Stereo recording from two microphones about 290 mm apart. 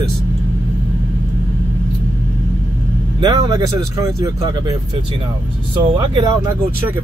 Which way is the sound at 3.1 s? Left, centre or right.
Centre.